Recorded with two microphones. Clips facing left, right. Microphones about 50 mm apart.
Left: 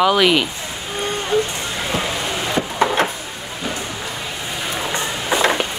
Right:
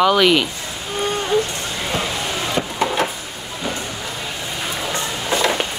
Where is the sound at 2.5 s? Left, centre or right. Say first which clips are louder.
Left 3 dB; left.